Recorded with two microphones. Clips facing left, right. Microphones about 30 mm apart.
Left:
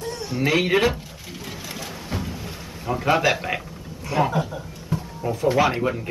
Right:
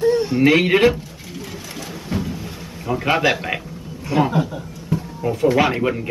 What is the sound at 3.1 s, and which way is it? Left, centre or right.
Speech, right.